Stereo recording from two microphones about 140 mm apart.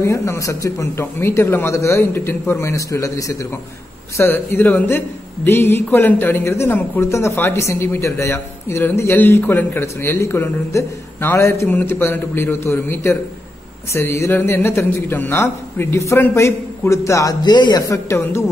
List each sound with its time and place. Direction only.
0.0 s a man's voice: 20° left (ahead or behind)